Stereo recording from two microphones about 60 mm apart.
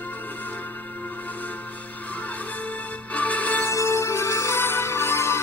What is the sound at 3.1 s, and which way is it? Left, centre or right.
Music, left.